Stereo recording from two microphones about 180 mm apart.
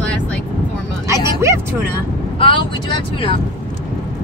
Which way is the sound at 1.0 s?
15° right (ahead or behind).